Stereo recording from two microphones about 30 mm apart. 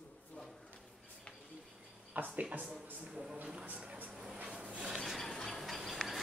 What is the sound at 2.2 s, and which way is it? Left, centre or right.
Speech, right.